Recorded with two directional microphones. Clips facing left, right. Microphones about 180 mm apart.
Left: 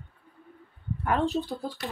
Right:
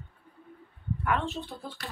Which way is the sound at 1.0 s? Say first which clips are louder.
Left 5 dB; 35° left (ahead or behind).